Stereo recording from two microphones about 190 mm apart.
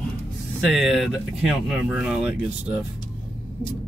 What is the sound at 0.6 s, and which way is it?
Speech, centre (ahead or behind).